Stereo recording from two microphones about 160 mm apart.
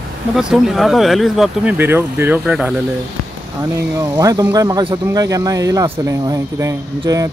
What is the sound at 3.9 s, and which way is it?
Speech, 20° right (ahead or behind).